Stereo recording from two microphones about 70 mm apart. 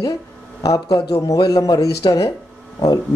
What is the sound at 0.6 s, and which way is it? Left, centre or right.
A man's voice, left.